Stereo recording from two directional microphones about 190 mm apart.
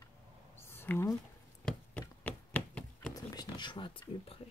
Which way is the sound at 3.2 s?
20° left (ahead or behind).